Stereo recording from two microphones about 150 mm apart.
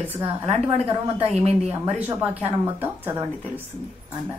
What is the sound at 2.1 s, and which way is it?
A woman's voice, 15° right (ahead or behind).